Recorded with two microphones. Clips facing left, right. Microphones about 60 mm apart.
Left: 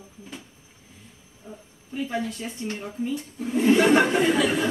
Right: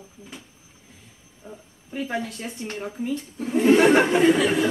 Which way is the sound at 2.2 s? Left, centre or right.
Right.